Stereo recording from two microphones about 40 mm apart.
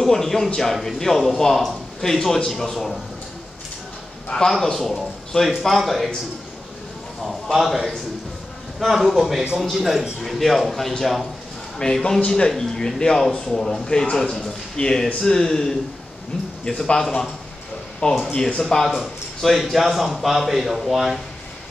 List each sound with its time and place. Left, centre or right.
0.0 s speech: centre
4.5 s speech: centre
7.5 s speech: centre
18.0 s speech: left
18.6 s speech: centre
19.4 s speech: centre